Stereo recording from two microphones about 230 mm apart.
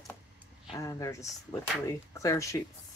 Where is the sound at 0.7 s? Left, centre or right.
Centre.